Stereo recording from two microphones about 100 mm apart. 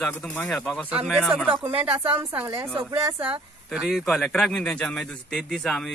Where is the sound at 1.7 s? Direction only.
65° right (ahead or behind).